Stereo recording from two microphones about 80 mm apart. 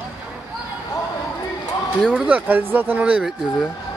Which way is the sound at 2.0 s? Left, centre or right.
Centre.